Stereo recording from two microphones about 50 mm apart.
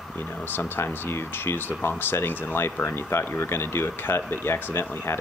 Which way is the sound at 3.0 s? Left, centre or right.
Left.